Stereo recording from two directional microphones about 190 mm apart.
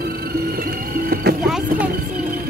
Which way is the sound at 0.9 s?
50° right (ahead or behind).